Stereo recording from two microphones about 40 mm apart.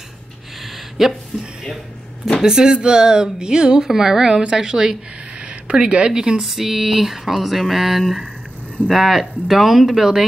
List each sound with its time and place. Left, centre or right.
0.7 s a sound: centre
2.4 s speech: centre
5.4 s speech: right
6.4 s speech: centre